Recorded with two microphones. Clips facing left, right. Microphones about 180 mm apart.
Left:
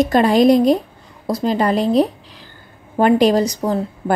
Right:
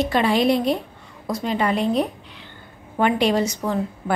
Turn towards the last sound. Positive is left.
turn(degrees=35)  # may be behind; listen again after turning